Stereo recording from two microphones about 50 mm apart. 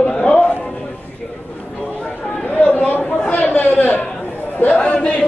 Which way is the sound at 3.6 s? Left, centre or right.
Left.